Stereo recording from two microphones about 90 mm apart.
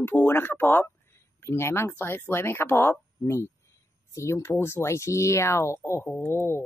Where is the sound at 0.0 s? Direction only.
25° left (ahead or behind).